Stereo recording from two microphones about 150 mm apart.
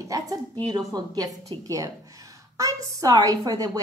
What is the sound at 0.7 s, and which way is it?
Speech, 25° right (ahead or behind).